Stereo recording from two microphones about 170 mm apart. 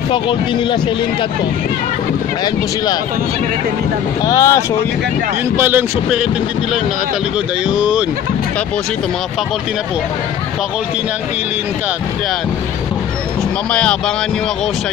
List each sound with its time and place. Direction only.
0.1 s speech: 30° left (ahead or behind)
4.3 s speech: 20° left (ahead or behind)
5.6 s speech: 10° right (ahead or behind)
13.7 s speech: 5° left (ahead or behind)